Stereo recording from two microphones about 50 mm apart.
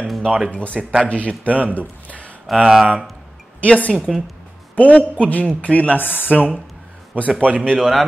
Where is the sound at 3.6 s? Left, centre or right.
Left.